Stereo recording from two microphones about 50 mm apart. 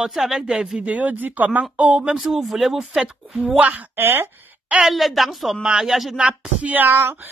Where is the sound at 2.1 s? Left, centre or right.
Centre.